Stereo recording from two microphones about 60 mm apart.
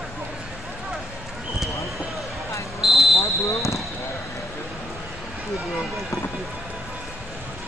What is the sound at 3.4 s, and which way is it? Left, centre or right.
Basketball bounce, left.